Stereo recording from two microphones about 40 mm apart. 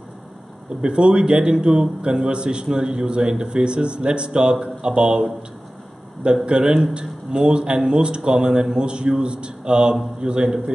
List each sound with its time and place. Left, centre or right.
0.8 s a man's voice: right
6.4 s a man's voice: right